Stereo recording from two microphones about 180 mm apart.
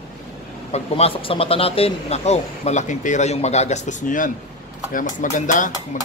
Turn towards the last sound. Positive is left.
turn(degrees=45)  # may be behind; listen again after turning